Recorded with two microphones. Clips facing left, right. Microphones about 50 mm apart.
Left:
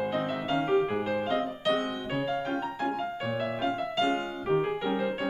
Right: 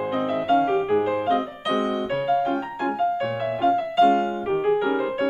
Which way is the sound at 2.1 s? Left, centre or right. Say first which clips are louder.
Right 8 dB; centre.